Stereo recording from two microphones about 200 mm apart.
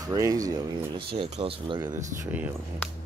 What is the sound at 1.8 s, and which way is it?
Speech, 10° right (ahead or behind).